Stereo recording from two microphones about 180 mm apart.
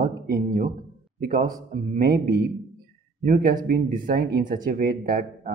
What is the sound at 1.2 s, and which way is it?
Speech, 50° right (ahead or behind).